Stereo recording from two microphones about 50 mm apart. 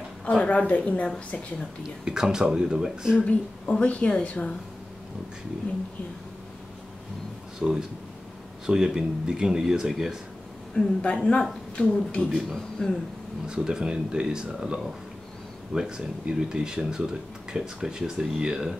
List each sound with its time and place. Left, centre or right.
0.2 s a woman's voice: left
1.8 s speech: centre
3.2 s a woman's voice: left
7.5 s speech: centre
10.7 s a woman's voice: centre
12.4 s speech: centre
13.5 s speech: centre